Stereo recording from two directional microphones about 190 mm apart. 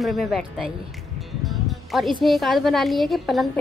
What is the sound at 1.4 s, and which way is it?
Music, centre (ahead or behind).